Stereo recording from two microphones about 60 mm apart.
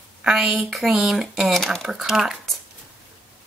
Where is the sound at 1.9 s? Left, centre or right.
Centre.